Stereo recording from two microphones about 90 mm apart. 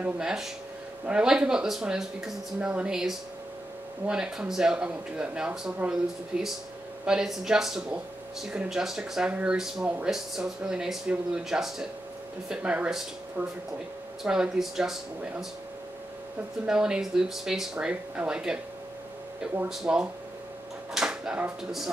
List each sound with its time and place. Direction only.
0.0 s speech: 5° right (ahead or behind); by 13.5 s 25° right (ahead or behind)
14.2 s speech: 10° right (ahead or behind)
16.6 s speech: 10° right (ahead or behind)
19.7 s speech: 5° right (ahead or behind)